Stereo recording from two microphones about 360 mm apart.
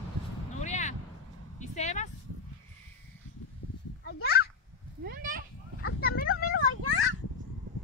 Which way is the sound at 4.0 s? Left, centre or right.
Left.